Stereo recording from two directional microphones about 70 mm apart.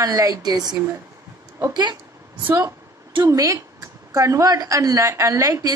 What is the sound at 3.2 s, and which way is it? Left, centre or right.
A woman's voice, right.